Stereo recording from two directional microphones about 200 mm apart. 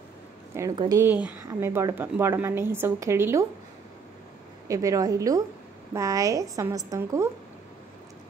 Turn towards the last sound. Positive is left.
turn(degrees=-15)  # may be behind; listen again after turning